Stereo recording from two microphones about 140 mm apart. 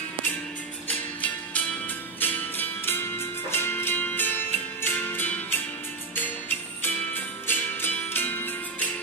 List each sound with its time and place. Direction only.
0.8 s music: 10° left (ahead or behind)
7.4 s music: 15° left (ahead or behind)